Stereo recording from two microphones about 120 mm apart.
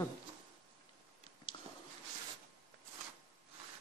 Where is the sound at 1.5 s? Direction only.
45° left (ahead or behind).